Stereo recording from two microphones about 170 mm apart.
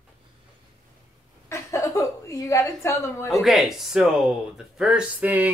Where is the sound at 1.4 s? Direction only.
15° left (ahead or behind).